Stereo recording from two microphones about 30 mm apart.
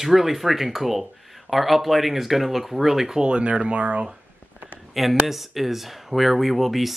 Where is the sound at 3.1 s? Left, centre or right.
Right.